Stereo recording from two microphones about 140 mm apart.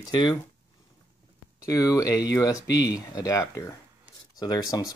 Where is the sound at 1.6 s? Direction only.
25° left (ahead or behind).